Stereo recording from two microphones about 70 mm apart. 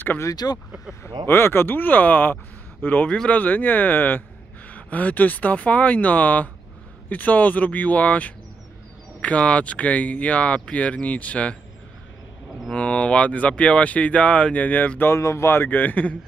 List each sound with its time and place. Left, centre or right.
0.2 s speech: left
1.0 s speech: left
12.7 s speech: centre
15.1 s a man's voice: left